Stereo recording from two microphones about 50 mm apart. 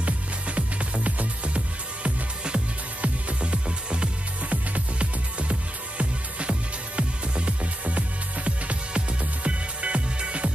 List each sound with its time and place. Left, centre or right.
0.0 s music: right